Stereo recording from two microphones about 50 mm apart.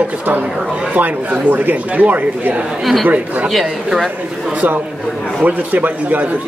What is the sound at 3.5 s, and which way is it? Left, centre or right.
Speech, centre.